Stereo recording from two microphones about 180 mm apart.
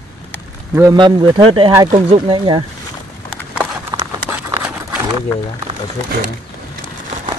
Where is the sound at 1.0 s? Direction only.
25° right (ahead or behind).